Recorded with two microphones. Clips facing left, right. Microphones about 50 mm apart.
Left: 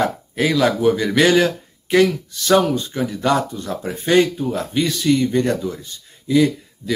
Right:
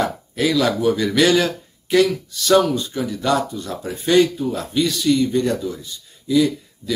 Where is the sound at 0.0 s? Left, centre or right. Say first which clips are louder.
Left 1 dB; left.